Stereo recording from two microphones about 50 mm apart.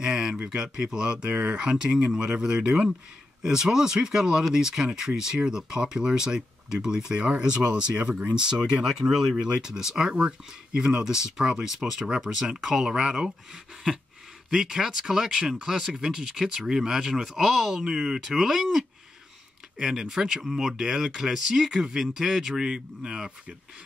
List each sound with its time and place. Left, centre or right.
0.0 s speech: centre
1.3 s speech: right
1.6 s speech: centre